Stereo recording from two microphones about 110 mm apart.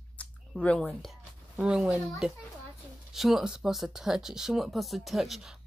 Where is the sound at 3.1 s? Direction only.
Centre (ahead or behind).